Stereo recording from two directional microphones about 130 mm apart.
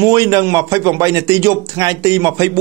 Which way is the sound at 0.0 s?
25° right (ahead or behind).